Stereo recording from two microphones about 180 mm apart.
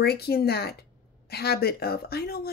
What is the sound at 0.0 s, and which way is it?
Speech, 60° left (ahead or behind).